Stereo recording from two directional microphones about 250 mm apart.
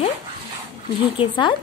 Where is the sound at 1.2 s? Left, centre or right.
Centre.